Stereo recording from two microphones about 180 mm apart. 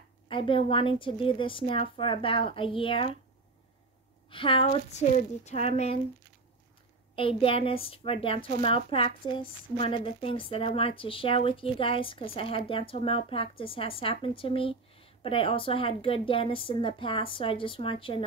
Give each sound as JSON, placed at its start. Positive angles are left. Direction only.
{"t": 0.3, "sound": "a woman's voice", "side_deg": 30}
{"t": 4.3, "sound": "a woman's voice", "side_deg": 30}
{"t": 7.2, "sound": "a woman's voice", "side_deg": 30}